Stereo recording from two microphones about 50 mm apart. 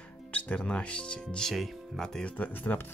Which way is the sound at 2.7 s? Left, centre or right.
Left.